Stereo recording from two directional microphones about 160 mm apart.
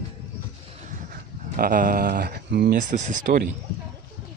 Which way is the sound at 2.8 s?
50° right (ahead or behind).